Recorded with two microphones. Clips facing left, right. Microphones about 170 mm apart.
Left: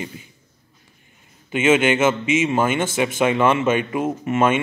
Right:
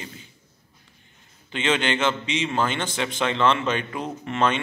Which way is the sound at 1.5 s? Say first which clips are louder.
Left 7 dB; 5° left (ahead or behind).